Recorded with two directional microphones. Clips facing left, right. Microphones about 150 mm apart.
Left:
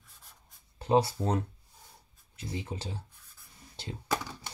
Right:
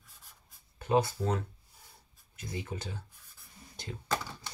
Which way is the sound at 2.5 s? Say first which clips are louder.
Left 1 dB; 25° left (ahead or behind).